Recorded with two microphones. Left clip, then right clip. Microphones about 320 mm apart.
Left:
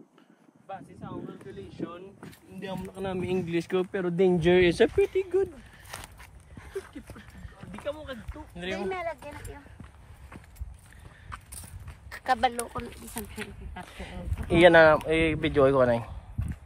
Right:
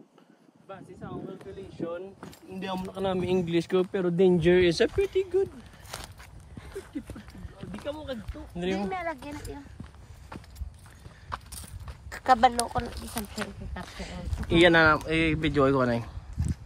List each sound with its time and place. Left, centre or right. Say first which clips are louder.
2.1 s speech: right 4 dB; centre
4.3 s speech: left 1 dB; centre
7.8 s a sound: even; centre
8.8 s speech: even; centre
12.1 s a sound: right 5 dB; right
12.9 s speech: right 3 dB; centre
14.0 s speech: left 2 dB; centre